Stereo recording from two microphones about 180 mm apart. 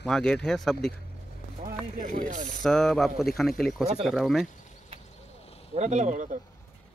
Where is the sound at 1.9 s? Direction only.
45° right (ahead or behind).